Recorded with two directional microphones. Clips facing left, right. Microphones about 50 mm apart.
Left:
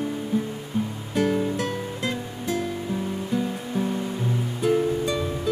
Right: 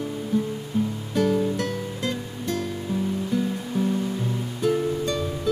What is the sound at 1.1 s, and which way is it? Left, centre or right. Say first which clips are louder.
Music: even; centre.